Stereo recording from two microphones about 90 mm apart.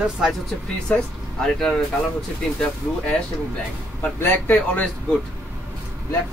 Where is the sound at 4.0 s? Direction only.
25° left (ahead or behind).